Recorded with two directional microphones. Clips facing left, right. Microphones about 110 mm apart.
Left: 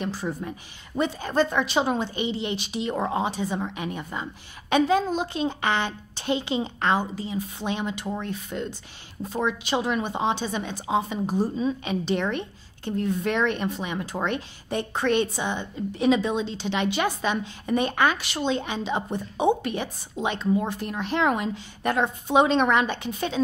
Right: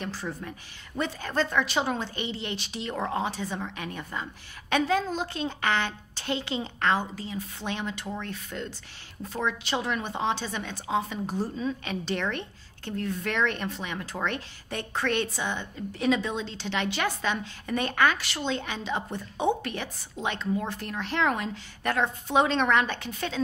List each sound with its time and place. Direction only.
0.0 s a woman's voice: 15° left (ahead or behind)